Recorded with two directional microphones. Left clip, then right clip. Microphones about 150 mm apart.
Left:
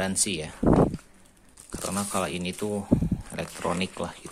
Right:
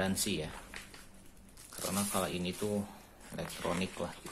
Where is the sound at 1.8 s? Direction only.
40° left (ahead or behind).